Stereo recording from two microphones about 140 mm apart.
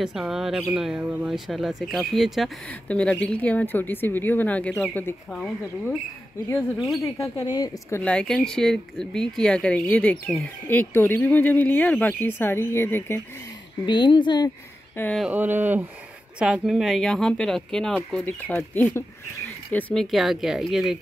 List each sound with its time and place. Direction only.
0.0 s speech: 5° right (ahead or behind)
7.0 s speech: 25° left (ahead or behind)
8.0 s speech: 5° left (ahead or behind)
13.8 s a woman's voice: 30° left (ahead or behind)
15.1 s speech: 10° right (ahead or behind)